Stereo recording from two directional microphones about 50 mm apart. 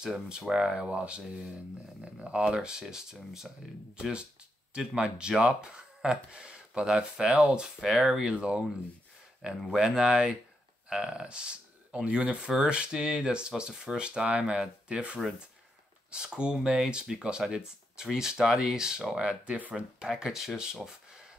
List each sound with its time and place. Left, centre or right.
0.0 s speech: centre
9.7 s speech: centre